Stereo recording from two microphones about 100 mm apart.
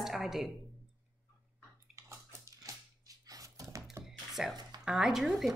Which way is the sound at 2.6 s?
35° right (ahead or behind).